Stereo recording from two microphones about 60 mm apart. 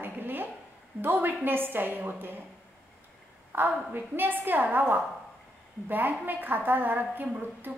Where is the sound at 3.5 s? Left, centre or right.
Right.